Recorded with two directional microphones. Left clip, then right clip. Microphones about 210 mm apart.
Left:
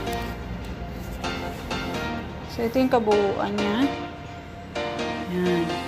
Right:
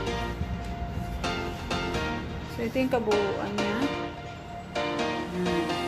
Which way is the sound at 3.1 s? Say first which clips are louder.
Left 5 dB; centre (ahead or behind).